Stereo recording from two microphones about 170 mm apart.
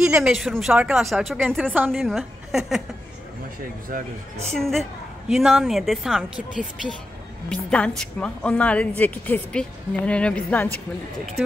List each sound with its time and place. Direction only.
0.0 s speech: 5° right (ahead or behind)
3.9 s speech: 50° right (ahead or behind)
4.6 s a woman's voice: centre (ahead or behind)